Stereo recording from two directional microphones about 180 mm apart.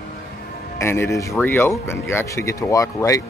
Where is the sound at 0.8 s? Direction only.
15° left (ahead or behind).